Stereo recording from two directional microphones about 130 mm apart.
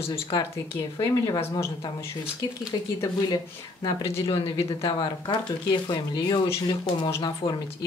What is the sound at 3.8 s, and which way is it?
Speech, 25° left (ahead or behind).